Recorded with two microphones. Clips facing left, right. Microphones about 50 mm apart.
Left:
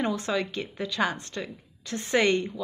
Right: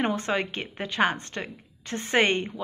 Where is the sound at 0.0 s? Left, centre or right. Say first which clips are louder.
Right 1 dB; right.